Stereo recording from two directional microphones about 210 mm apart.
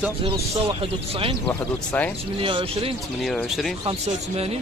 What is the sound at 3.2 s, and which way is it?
Speech, centre (ahead or behind).